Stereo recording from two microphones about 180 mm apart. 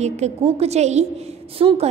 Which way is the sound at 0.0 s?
40° right (ahead or behind).